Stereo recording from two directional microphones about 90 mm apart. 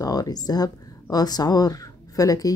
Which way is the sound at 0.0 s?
45° left (ahead or behind).